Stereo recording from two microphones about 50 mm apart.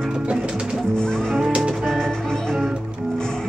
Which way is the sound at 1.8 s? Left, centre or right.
Centre.